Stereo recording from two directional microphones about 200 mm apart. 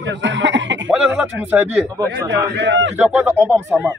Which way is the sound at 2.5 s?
65° right (ahead or behind).